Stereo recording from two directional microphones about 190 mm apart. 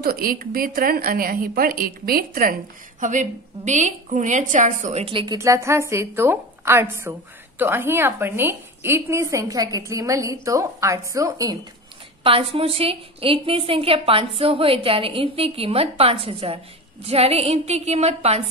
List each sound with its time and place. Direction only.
0.0 s a woman's voice: 50° right (ahead or behind); by 5.4 s 25° right (ahead or behind)
5.4 s a woman's voice: 15° right (ahead or behind)
12.2 s a woman's voice: 30° right (ahead or behind)